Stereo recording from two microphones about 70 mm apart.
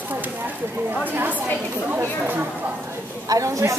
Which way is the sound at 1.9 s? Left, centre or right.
Right.